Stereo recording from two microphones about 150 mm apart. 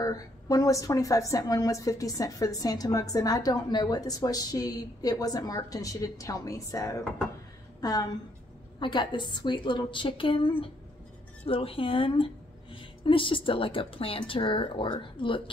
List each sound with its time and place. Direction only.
0.0 s a woman's voice: 25° left (ahead or behind)